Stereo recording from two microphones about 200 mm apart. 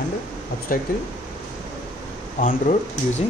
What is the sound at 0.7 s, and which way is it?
Speech, 45° left (ahead or behind).